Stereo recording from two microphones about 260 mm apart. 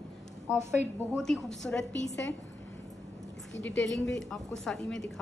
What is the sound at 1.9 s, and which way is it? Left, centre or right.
Speech, left.